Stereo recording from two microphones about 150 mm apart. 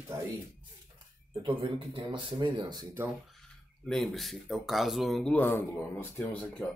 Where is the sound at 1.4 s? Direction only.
35° right (ahead or behind).